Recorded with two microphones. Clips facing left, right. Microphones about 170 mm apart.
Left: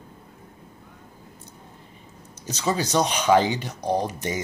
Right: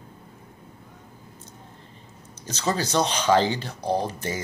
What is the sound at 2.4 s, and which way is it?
Speech, 15° left (ahead or behind).